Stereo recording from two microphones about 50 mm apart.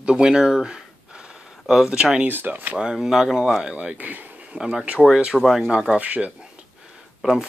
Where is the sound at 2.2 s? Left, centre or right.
Right.